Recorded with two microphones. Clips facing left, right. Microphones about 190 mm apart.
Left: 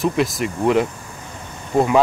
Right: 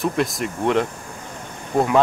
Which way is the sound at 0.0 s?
Centre (ahead or behind).